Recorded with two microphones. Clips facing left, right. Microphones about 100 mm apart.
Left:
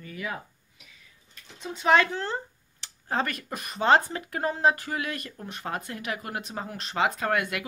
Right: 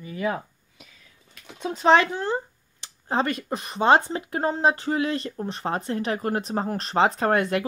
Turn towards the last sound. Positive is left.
turn(degrees=-35)  # may be behind; listen again after turning